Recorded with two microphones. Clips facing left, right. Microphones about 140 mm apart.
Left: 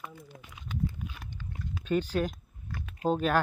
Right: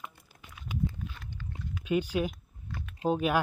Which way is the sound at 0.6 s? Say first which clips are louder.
Right 2 dB; 25° left (ahead or behind).